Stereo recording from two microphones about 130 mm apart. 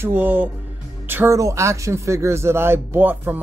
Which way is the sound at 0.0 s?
15° right (ahead or behind).